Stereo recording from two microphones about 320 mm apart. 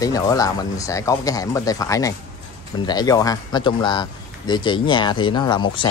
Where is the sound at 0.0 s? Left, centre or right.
Centre.